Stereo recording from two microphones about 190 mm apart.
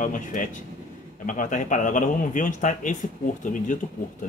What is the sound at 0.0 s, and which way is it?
Speech, 45° left (ahead or behind).